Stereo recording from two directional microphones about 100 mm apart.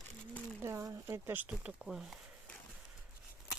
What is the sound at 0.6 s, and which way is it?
Speech, 25° right (ahead or behind).